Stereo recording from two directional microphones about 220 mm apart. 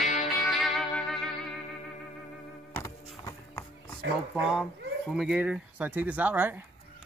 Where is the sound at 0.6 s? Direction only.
Centre (ahead or behind).